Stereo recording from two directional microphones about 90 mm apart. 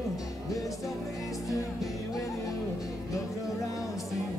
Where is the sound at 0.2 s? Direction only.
40° left (ahead or behind).